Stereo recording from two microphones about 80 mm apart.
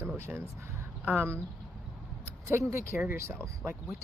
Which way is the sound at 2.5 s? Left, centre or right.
Right.